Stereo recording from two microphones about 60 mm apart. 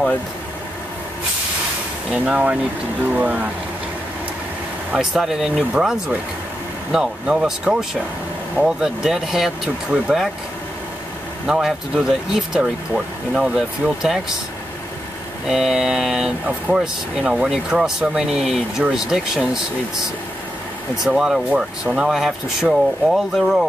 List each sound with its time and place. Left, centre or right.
2.0 s speech: centre
4.9 s speech: centre
11.4 s speech: centre
15.4 s speech: centre
21.0 s speech: centre